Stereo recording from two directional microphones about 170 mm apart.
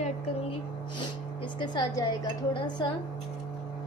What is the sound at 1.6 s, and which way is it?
A woman's voice, 25° left (ahead or behind).